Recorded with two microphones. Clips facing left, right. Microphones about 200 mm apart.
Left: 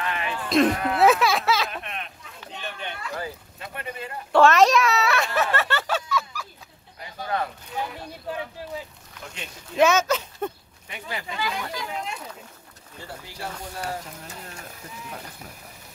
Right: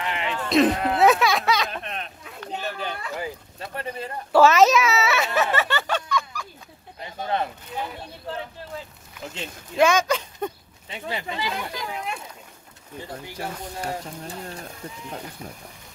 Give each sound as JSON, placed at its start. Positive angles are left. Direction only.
{"t": 0.0, "sound": "a sound", "side_deg": -20}
{"t": 0.4, "sound": "speech", "side_deg": 0}
{"t": 0.9, "sound": "music", "side_deg": 0}
{"t": 1.8, "sound": "a sound", "side_deg": -35}
{"t": 3.5, "sound": "speech", "side_deg": -35}
{"t": 4.3, "sound": "speech", "side_deg": -5}
{"t": 7.0, "sound": "a sound", "side_deg": -25}
{"t": 9.8, "sound": "speech", "side_deg": 5}
{"t": 10.9, "sound": "speech", "side_deg": -25}
{"t": 13.0, "sound": "speech", "side_deg": -20}